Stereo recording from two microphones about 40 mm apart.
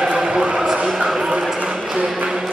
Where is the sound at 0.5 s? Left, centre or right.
Centre.